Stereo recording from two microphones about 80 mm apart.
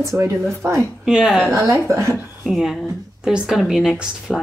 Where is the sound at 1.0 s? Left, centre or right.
Centre.